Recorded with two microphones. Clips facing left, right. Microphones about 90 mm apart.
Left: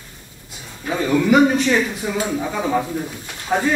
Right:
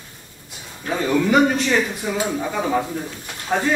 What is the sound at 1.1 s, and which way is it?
Speech, 15° left (ahead or behind).